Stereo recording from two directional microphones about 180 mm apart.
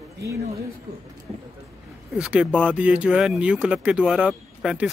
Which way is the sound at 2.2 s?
5° right (ahead or behind).